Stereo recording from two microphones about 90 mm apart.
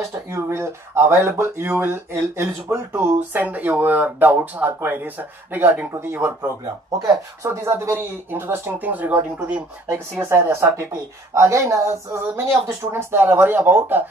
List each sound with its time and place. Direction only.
0.3 s speech: 30° right (ahead or behind)
10.2 s speech: 30° right (ahead or behind)